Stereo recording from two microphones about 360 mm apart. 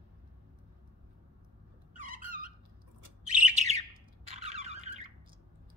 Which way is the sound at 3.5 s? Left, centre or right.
Centre.